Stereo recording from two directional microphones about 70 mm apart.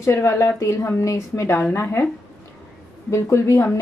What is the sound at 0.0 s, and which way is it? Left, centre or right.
A woman's voice, left.